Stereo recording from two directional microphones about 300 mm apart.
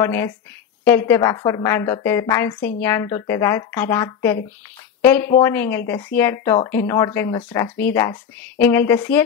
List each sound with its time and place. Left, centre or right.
0.0 s speech: centre